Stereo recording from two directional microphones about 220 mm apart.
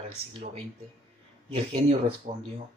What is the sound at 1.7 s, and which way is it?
Speech, 25° right (ahead or behind).